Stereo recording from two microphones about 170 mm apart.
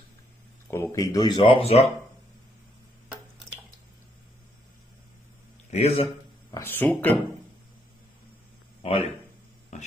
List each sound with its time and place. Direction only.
0.7 s speech: 15° left (ahead or behind); by 1.9 s 35° left (ahead or behind)
5.7 s a man's voice: 40° left (ahead or behind)
6.5 s speech: 10° left (ahead or behind)
8.8 s speech: 35° left (ahead or behind)
9.7 s a sound: 40° left (ahead or behind)